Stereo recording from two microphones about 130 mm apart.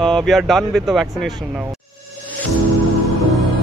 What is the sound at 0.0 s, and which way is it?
Speech, centre (ahead or behind).